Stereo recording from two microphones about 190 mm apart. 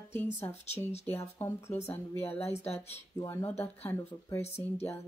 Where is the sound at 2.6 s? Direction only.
35° left (ahead or behind).